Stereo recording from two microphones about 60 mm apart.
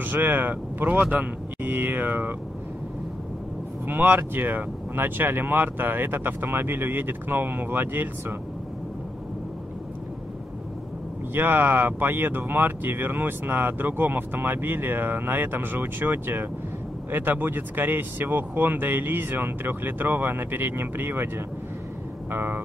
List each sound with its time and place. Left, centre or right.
0.0 s speech: right
3.8 s speech: right
11.3 s speech: right
22.3 s speech: right